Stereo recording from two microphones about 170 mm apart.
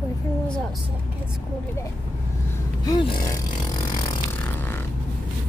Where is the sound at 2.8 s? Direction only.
25° left (ahead or behind).